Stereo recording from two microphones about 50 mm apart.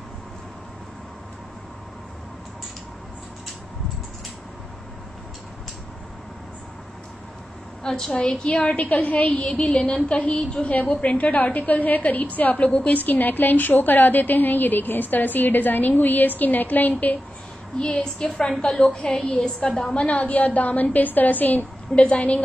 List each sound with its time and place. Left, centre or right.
7.8 s a woman's voice: centre
8.7 s a woman's voice: left
17.7 s a woman's voice: centre; by 21.6 s left
21.9 s a woman's voice: left